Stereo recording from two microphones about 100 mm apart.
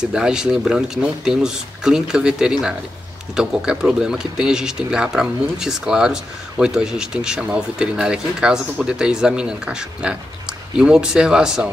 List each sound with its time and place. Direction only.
0.0 s speech: 5° right (ahead or behind)